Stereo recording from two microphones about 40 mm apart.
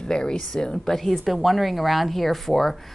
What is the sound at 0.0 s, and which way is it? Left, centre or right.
A woman's voice, centre.